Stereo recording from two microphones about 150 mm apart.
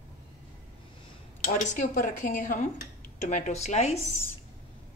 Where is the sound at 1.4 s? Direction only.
55° left (ahead or behind).